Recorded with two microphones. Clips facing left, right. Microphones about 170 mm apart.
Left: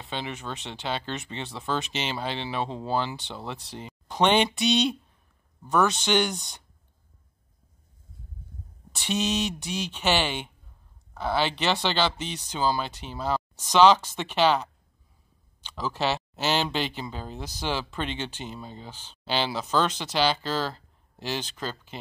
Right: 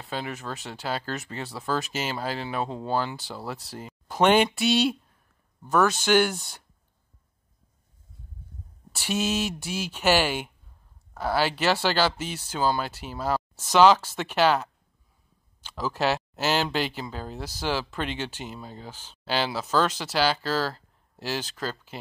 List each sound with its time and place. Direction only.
0.1 s speech: centre (ahead or behind)
2.2 s speech: 25° left (ahead or behind)
2.7 s speech: centre (ahead or behind)
8.9 s speech: 10° right (ahead or behind)
17.2 s speech: 20° left (ahead or behind)
17.5 s speech: 5° right (ahead or behind)